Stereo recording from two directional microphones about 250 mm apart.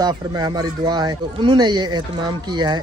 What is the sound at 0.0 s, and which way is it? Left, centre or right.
Speech, centre.